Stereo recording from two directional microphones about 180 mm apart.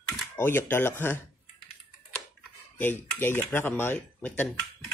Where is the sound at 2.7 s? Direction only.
10° left (ahead or behind).